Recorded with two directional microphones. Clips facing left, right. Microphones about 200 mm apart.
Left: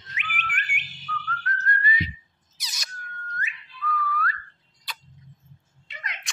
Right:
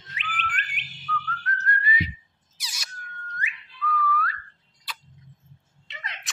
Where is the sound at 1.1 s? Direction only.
10° left (ahead or behind).